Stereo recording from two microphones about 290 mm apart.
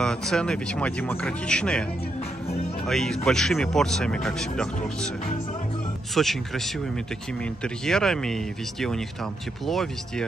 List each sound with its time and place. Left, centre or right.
0.0 s speech: centre
2.9 s speech: centre
6.1 s speech: centre